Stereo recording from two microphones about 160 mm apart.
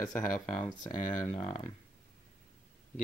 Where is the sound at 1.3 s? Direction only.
40° left (ahead or behind).